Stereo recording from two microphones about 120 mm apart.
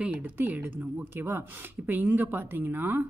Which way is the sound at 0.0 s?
10° right (ahead or behind).